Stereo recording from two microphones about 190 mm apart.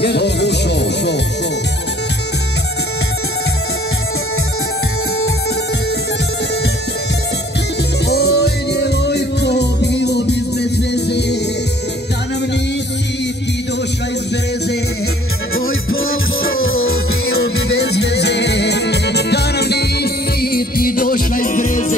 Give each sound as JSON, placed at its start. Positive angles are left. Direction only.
{"t": 0.0, "sound": "music", "side_deg": 60}
{"t": 8.1, "sound": "music", "side_deg": 60}
{"t": 15.5, "sound": "music", "side_deg": 90}
{"t": 17.4, "sound": "music", "side_deg": 60}